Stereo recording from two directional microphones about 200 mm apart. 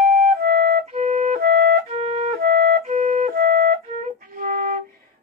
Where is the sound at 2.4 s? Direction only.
50° right (ahead or behind).